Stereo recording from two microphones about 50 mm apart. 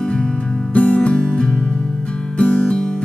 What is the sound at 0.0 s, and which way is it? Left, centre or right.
Music, centre.